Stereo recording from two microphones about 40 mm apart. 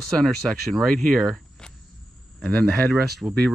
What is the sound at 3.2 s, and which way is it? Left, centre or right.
Speech, right.